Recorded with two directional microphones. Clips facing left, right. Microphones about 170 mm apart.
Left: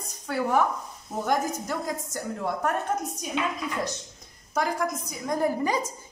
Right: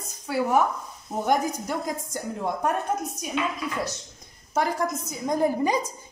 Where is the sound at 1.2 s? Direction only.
20° right (ahead or behind).